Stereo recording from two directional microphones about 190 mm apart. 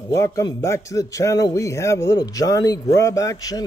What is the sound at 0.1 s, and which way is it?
A man's voice, 15° left (ahead or behind).